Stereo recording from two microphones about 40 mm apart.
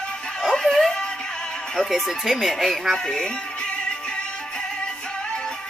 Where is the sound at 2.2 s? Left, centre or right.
Centre.